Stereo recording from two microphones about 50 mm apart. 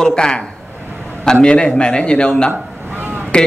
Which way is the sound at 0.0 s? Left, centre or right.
Centre.